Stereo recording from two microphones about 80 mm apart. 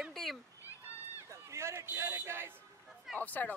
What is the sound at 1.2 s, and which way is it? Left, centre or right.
Speech, right.